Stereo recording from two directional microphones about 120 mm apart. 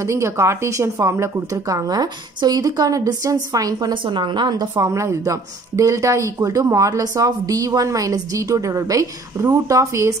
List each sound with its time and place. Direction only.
0.0 s a woman's voice: 25° right (ahead or behind)